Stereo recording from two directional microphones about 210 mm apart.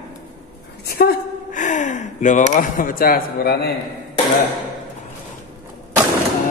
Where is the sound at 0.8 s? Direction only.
45° left (ahead or behind).